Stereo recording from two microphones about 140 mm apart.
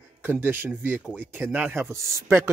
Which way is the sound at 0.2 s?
15° right (ahead or behind).